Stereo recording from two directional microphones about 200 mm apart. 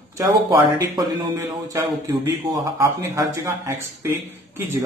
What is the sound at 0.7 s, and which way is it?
A man's voice, 15° right (ahead or behind).